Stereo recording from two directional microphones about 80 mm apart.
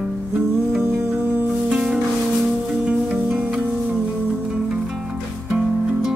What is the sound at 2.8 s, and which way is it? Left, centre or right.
Music, centre.